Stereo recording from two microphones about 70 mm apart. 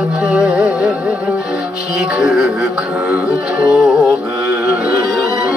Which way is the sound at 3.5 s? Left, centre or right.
Centre.